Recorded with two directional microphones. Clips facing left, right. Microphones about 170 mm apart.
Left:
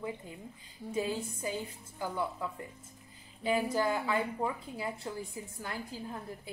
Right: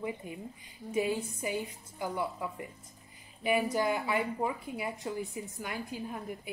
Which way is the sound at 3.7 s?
15° right (ahead or behind).